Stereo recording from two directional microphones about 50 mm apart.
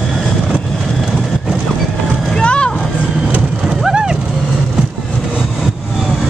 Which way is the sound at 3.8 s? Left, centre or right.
Centre.